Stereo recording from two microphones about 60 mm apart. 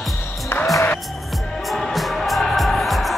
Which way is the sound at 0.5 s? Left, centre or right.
Left.